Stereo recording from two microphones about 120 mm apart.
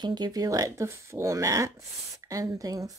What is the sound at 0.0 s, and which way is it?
Speech, 35° right (ahead or behind).